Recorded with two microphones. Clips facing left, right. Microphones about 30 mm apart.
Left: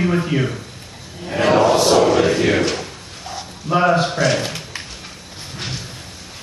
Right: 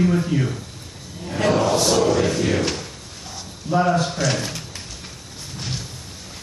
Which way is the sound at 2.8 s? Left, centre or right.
Left.